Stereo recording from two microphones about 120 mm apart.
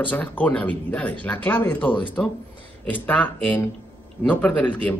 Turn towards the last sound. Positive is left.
turn(degrees=15)  # may be behind; listen again after turning